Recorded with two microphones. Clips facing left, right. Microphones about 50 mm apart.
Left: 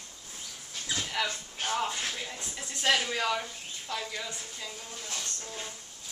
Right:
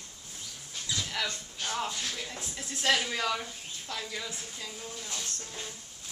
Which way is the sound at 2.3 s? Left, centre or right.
Centre.